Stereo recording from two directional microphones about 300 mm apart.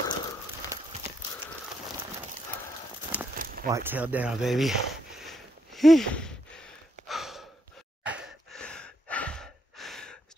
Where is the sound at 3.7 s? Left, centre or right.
Centre.